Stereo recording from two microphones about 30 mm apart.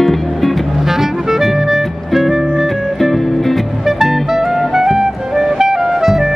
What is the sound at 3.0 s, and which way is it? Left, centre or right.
Music, centre.